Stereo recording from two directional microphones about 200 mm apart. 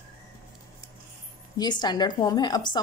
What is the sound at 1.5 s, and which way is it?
Speech, 20° left (ahead or behind).